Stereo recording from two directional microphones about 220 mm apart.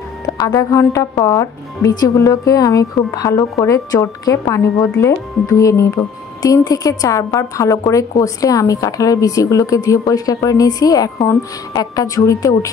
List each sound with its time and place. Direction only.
0.4 s speech: 15° left (ahead or behind)